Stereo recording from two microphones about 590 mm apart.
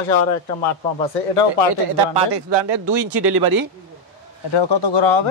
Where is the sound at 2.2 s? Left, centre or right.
Right.